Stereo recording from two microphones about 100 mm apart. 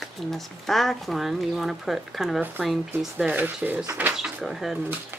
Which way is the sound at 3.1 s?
15° right (ahead or behind).